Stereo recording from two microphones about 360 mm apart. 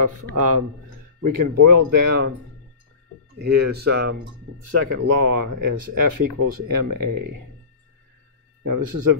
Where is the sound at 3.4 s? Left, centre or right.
Right.